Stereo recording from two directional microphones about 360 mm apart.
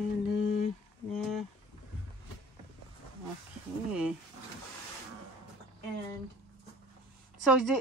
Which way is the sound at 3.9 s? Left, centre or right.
Centre.